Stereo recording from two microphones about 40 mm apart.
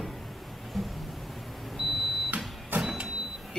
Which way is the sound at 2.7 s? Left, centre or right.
Right.